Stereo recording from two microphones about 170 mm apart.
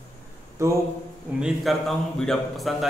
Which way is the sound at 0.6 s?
15° right (ahead or behind).